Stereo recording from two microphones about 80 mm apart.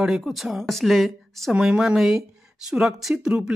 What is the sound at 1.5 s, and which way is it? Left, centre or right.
Speech, centre.